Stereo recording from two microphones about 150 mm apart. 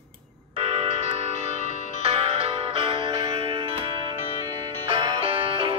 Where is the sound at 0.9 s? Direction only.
55° left (ahead or behind).